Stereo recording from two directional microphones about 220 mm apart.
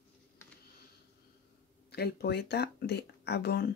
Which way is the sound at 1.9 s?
45° left (ahead or behind).